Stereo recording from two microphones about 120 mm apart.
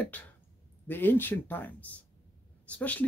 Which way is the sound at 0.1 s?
10° left (ahead or behind).